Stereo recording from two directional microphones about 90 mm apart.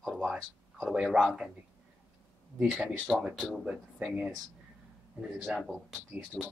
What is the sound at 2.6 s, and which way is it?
Speech, 10° right (ahead or behind).